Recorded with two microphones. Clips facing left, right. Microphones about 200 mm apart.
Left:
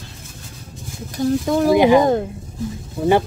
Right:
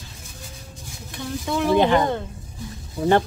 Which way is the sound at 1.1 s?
40° left (ahead or behind).